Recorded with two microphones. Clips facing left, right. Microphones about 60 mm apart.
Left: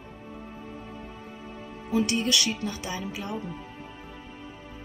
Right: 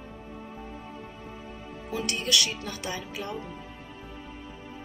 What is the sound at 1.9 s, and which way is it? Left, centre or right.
Speech, left.